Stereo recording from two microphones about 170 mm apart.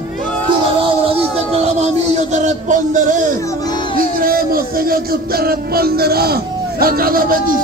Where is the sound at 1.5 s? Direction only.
40° right (ahead or behind).